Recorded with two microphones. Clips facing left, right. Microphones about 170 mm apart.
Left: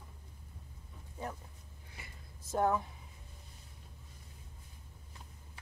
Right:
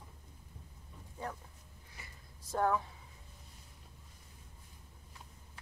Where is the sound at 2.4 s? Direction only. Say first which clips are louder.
Left 1 dB; 20° left (ahead or behind).